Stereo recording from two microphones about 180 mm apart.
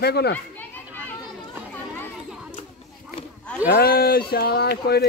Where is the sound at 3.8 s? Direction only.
60° left (ahead or behind).